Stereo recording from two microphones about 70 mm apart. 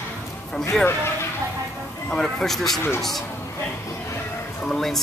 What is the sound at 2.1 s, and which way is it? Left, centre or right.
Speech, centre.